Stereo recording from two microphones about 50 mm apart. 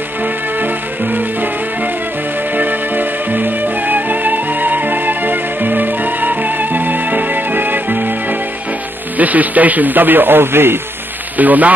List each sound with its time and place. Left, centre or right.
0.6 s music: right
2.5 s music: right
9.2 s speech: right
11.3 s speech: right